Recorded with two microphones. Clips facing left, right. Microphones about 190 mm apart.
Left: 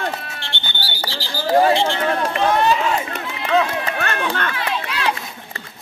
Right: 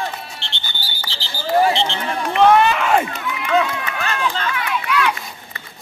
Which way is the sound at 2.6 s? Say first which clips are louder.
Right 1 dB; 65° right (ahead or behind).